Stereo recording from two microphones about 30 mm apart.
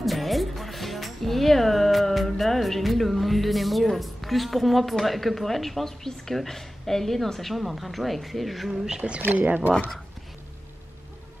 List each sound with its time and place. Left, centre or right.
0.0 s music: centre
3.9 s speech: centre
9.2 s speech: right